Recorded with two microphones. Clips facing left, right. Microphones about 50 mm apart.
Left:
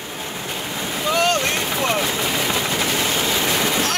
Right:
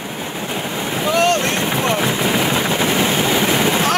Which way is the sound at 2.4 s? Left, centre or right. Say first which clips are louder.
Right 4 dB; right.